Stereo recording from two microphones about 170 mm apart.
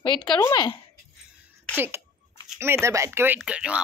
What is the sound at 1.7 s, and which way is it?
Speech, 10° right (ahead or behind).